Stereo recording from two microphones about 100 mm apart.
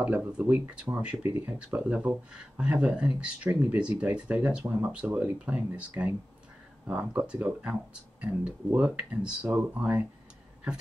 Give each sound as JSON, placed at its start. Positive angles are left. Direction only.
{"t": 0.0, "sound": "speech", "side_deg": -10}